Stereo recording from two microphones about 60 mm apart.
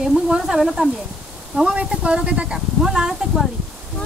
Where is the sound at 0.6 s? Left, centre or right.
Centre.